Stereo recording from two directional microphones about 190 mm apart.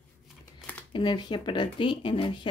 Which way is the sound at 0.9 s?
25° left (ahead or behind).